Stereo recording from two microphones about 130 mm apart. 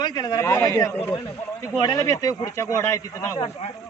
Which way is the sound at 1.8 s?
30° left (ahead or behind).